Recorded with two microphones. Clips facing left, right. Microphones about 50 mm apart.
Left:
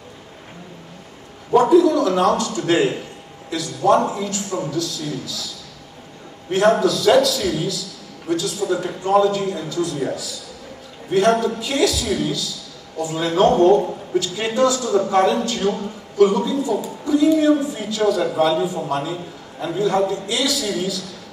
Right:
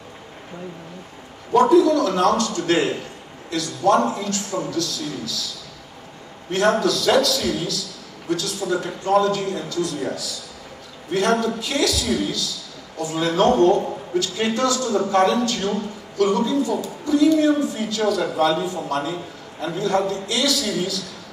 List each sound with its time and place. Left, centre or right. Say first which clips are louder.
1.5 s a man's voice: left 1 dB; centre
6.5 s a man's voice: left 3 dB; centre
8.5 s a man's voice: left 2 dB; centre
9.0 s speech: left 2 dB; centre
11.1 s a man's voice: left 3 dB; centre
20.6 s a man's voice: left 1 dB; centre